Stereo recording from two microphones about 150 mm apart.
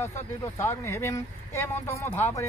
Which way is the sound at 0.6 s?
15° left (ahead or behind).